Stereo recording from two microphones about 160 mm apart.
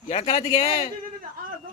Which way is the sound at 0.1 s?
40° left (ahead or behind).